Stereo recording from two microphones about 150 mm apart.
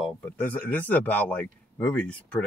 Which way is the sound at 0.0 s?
10° left (ahead or behind).